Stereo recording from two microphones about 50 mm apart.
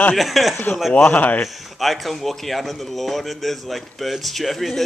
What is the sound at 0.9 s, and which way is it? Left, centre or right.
Speech, left.